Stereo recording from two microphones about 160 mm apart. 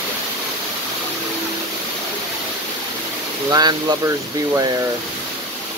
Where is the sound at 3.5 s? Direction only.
25° right (ahead or behind).